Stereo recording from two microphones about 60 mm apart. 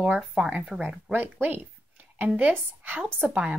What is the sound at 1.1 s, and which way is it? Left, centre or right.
Speech, right.